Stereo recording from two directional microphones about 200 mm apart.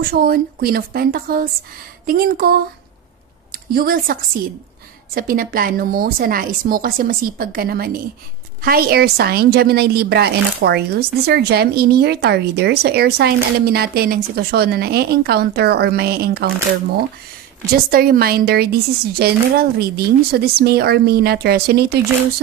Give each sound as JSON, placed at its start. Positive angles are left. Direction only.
{"t": 0.0, "sound": "a woman's voice", "side_deg": -50}
{"t": 3.7, "sound": "a woman's voice", "side_deg": -45}
{"t": 17.8, "sound": "a woman's voice", "side_deg": -50}